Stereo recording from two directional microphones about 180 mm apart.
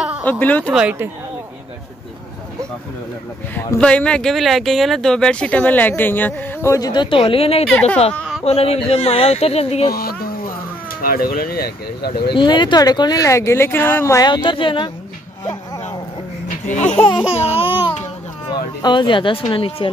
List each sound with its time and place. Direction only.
0.2 s speech: 10° left (ahead or behind)
0.7 s speech: 10° right (ahead or behind)
3.5 s speech: 10° left (ahead or behind); by 7.6 s 30° left (ahead or behind)
7.7 s speech: 5° left (ahead or behind)
8.5 s speech: 35° left (ahead or behind)
11.0 s speech: 55° left (ahead or behind)
12.4 s speech: 25° left (ahead or behind)
16.6 s speech: 40° left (ahead or behind)
16.9 s speech: 5° left (ahead or behind)
17.3 s laughter: 30° left (ahead or behind)
18.5 s speech: 25° left (ahead or behind)